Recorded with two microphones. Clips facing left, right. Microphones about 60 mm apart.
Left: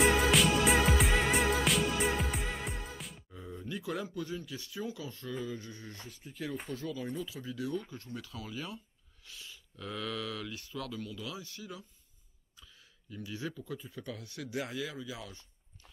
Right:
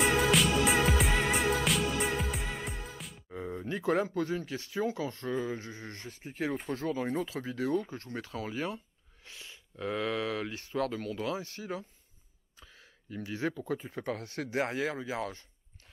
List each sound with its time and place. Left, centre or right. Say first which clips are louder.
0.0 s music: even; centre
3.3 s speech: right 8 dB; right
7.1 s speech: right 5 dB; right
13.1 s speech: right 6 dB; right